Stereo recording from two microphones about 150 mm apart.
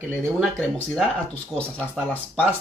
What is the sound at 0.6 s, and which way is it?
Speech, 10° left (ahead or behind).